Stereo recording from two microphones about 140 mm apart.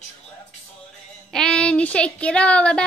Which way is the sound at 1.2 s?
5° left (ahead or behind).